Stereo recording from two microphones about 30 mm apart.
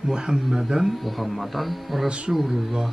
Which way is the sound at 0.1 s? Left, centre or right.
Right.